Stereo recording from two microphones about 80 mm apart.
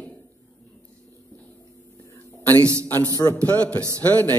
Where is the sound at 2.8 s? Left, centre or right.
Left.